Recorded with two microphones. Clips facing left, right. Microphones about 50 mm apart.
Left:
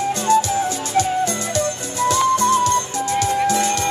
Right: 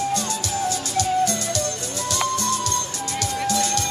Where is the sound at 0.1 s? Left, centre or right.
Left.